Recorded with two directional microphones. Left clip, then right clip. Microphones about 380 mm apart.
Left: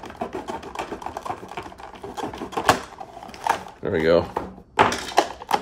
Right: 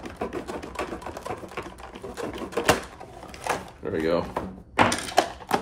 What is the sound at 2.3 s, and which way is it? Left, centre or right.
Typewriter, centre.